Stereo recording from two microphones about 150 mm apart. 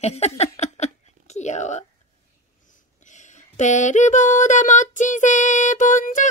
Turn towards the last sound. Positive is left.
turn(degrees=55)  # may be behind; listen again after turning